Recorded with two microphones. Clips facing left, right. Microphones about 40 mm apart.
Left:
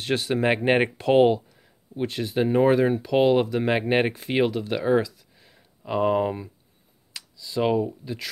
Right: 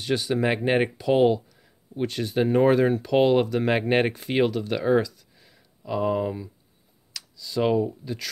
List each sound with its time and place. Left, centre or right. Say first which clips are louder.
0.0 s speech: left 1 dB; left; by 4.5 s centre
4.5 s speech: even; centre
4.7 s speech: even; centre
5.3 s a sound: left 1 dB; centre
5.9 s speech: left 3 dB; left
7.2 s speech: even; centre